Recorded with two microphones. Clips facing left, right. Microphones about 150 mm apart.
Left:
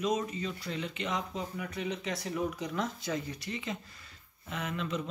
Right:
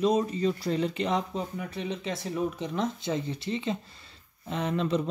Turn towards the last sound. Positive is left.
turn(degrees=-35)  # may be behind; listen again after turning